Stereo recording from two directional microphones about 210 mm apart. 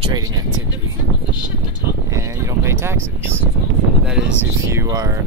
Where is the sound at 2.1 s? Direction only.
15° right (ahead or behind).